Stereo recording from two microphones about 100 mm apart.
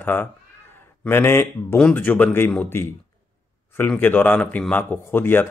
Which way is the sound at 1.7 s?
10° left (ahead or behind).